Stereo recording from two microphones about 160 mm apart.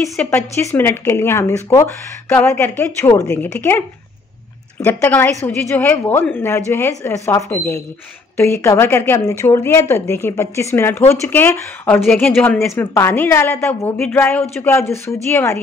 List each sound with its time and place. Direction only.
0.3 s speech: 15° left (ahead or behind)
12.0 s speech: 5° left (ahead or behind)
12.3 s speech: 15° left (ahead or behind)